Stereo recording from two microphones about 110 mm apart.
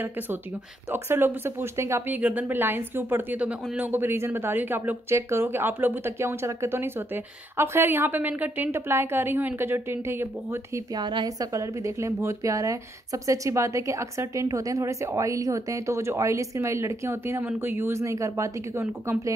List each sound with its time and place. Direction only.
0.9 s a woman's voice: 20° right (ahead or behind)
2.1 s a woman's voice: 15° right (ahead or behind)
11.0 s a woman's voice: 40° right (ahead or behind)